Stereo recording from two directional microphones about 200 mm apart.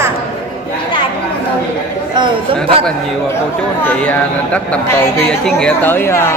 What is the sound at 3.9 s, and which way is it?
Speech, 5° left (ahead or behind).